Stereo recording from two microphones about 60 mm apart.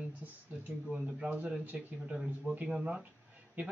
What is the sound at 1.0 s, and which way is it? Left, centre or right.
A man's voice, right.